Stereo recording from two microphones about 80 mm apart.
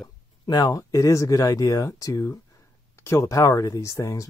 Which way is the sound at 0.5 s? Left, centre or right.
Left.